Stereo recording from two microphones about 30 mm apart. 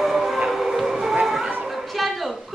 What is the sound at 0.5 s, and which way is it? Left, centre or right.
Music, centre.